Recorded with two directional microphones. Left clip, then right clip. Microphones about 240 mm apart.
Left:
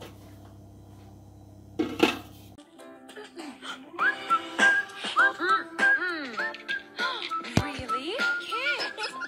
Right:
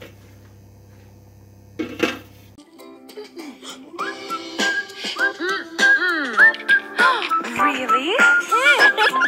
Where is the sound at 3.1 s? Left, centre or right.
Centre.